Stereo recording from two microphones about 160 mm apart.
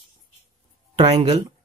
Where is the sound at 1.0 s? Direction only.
40° right (ahead or behind).